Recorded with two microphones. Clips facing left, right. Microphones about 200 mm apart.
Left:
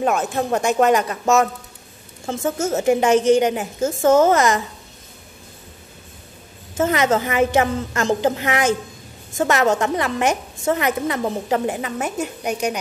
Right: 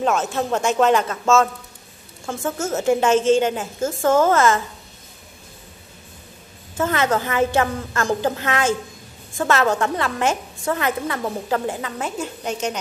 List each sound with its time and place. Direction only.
0.2 s a woman's voice: 15° left (ahead or behind)
6.8 s a woman's voice: 20° left (ahead or behind)